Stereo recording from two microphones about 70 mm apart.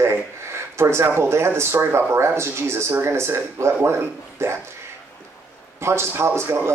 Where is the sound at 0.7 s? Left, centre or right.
Right.